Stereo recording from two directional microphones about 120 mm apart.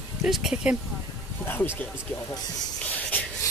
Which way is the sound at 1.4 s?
15° left (ahead or behind).